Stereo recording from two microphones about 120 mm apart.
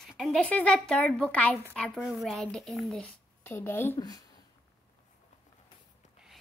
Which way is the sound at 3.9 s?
30° left (ahead or behind).